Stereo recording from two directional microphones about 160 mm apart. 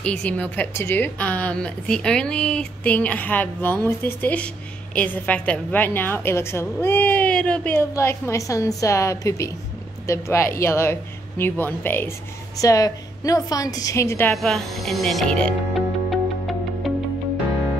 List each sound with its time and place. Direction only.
0.0 s a woman's voice: 5° left (ahead or behind)
14.3 s music: centre (ahead or behind)